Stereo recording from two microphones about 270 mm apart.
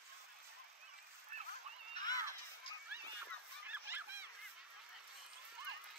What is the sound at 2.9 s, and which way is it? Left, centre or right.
Honk, centre.